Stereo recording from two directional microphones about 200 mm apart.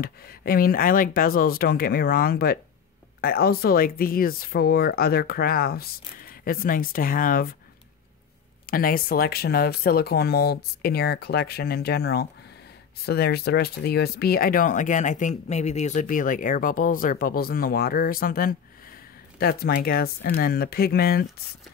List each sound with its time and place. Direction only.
0.0 s speech: 50° left (ahead or behind)
8.6 s speech: 45° left (ahead or behind)